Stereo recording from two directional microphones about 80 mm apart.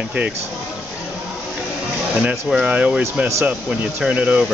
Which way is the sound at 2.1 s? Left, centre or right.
Centre.